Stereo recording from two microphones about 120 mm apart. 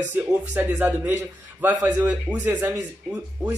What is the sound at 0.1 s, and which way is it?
A man's voice, 15° right (ahead or behind).